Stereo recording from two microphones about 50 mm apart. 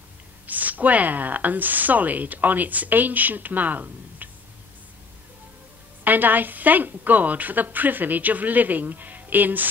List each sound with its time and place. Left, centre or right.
0.5 s speech: right
6.0 s speech: right